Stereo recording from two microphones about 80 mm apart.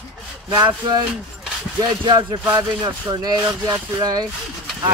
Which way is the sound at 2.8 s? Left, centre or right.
Right.